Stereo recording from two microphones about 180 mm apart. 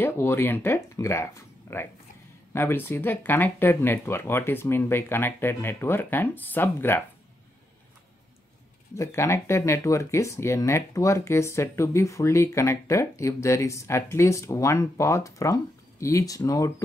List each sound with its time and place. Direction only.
0.0 s speech: 10° left (ahead or behind)
8.9 s speech: 15° left (ahead or behind)